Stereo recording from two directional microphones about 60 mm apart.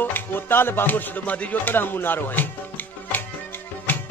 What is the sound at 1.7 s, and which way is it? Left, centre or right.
Music, left.